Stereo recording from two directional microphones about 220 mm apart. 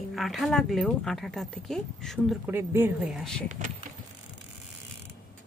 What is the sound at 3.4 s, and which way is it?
Speech, 35° right (ahead or behind).